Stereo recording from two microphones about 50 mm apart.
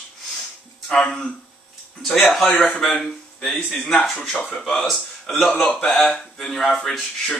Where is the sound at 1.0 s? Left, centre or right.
Centre.